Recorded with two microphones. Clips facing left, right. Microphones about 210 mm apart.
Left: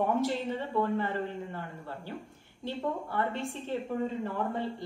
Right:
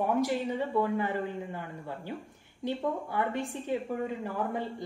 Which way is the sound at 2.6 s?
15° right (ahead or behind).